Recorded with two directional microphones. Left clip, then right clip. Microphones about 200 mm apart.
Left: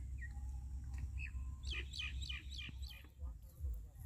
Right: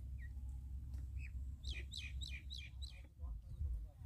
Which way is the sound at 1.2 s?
30° right (ahead or behind).